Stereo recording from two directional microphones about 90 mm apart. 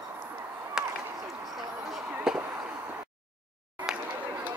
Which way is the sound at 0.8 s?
5° right (ahead or behind).